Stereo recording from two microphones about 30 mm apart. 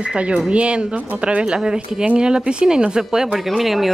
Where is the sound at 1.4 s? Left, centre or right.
Right.